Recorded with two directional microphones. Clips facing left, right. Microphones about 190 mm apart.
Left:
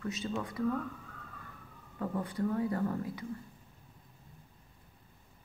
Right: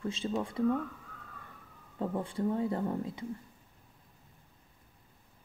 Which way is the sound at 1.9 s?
25° right (ahead or behind).